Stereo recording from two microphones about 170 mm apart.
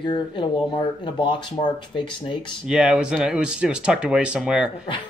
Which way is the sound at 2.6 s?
5° right (ahead or behind).